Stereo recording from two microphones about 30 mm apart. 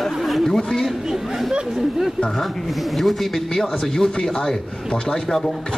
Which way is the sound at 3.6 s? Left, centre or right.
Centre.